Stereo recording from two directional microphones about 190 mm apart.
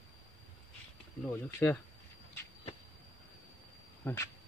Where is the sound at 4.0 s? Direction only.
10° left (ahead or behind).